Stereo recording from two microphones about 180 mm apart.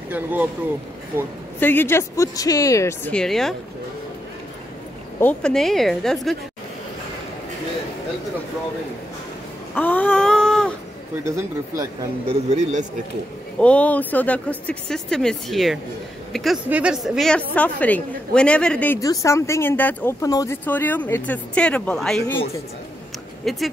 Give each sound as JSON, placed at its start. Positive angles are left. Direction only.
{"t": 0.1, "sound": "speech", "side_deg": -10}
{"t": 1.6, "sound": "a woman's voice", "side_deg": 10}
{"t": 5.2, "sound": "a woman's voice", "side_deg": 5}
{"t": 9.8, "sound": "a sound", "side_deg": 10}
{"t": 11.2, "sound": "speech", "side_deg": -15}
{"t": 12.3, "sound": "speech", "side_deg": -40}
{"t": 13.6, "sound": "a woman's voice", "side_deg": 5}
{"t": 23.5, "sound": "a woman's voice", "side_deg": 0}